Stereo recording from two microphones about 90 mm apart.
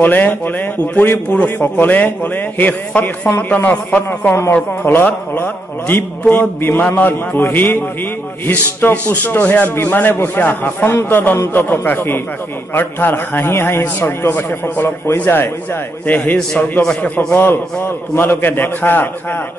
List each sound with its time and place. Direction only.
0.0 s a man's voice: 20° left (ahead or behind)